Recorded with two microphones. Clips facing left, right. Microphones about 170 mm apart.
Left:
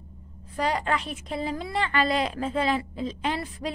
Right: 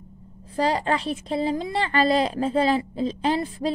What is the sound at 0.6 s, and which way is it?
A woman's voice, 30° right (ahead or behind).